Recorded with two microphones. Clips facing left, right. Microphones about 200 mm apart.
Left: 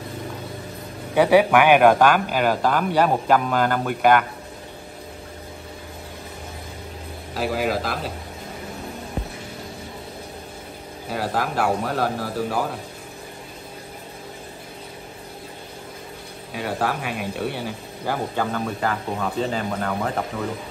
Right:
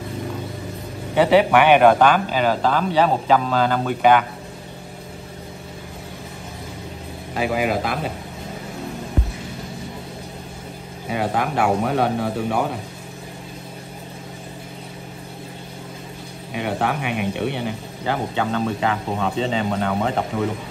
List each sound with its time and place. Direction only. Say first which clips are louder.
1.1 s speech: right 1 dB; 10° left (ahead or behind)
7.3 s speech: right 2 dB; centre (ahead or behind)
11.1 s speech: right 3 dB; centre (ahead or behind)
16.5 s speech: right 2 dB; centre (ahead or behind)
17.1 s speech: right 3 dB; 65° right (ahead or behind)
18.0 s speech: right 2 dB; 5° left (ahead or behind)